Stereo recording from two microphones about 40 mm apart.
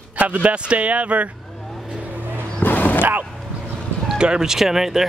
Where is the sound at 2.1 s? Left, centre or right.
Right.